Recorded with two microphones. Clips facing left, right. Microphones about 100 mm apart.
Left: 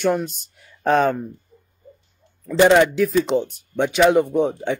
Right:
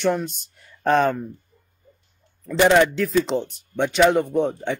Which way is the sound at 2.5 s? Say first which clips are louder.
Left 2 dB; 5° left (ahead or behind).